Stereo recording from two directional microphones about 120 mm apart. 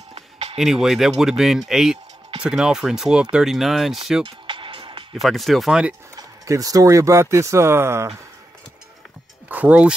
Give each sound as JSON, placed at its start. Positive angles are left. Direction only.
{"t": 0.1, "sound": "a sound", "side_deg": -55}
{"t": 0.6, "sound": "speech", "side_deg": -5}
{"t": 4.2, "sound": "music", "side_deg": -45}
{"t": 5.1, "sound": "speech", "side_deg": 0}
{"t": 6.1, "sound": "speech", "side_deg": -30}
{"t": 9.5, "sound": "speech", "side_deg": -15}